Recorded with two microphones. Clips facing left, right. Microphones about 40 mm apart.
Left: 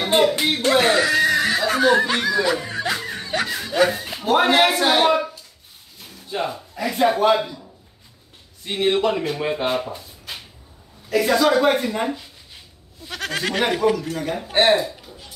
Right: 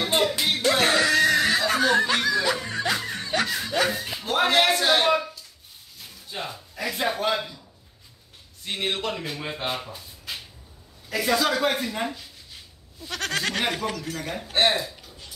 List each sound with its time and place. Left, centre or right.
0.0 s music: centre
0.7 s snicker: centre
4.2 s speech: centre
8.6 s speech: centre
9.9 s a sound: centre
11.1 s speech: centre